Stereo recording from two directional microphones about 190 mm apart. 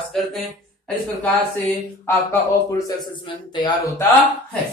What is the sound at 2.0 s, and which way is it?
Speech, 15° left (ahead or behind).